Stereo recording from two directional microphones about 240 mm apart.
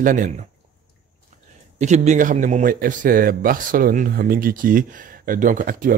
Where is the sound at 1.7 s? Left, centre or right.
Right.